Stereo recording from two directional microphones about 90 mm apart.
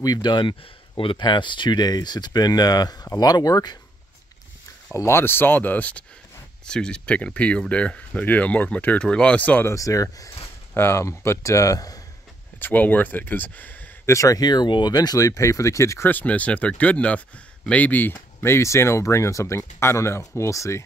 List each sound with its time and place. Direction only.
0.0 s speech: 50° left (ahead or behind); by 1.2 s 75° left (ahead or behind)
1.2 s speech: 60° left (ahead or behind)
4.9 s speech: 30° left (ahead or behind)
9.7 s speech: 40° left (ahead or behind)
10.7 s speech: 25° left (ahead or behind)
12.5 s speech: 20° left (ahead or behind)
14.0 s speech: 35° left (ahead or behind)
16.1 s speech: 15° left (ahead or behind); by 20.8 s 35° left (ahead or behind)